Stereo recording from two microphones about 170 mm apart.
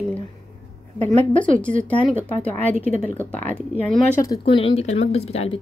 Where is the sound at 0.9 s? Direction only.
45° right (ahead or behind).